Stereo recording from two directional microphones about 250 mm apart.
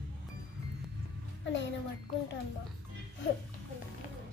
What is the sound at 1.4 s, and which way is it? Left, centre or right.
Music, left.